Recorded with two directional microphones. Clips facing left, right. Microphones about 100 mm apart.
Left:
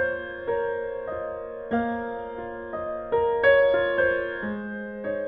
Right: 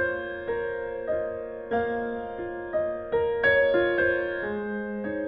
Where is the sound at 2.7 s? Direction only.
40° left (ahead or behind).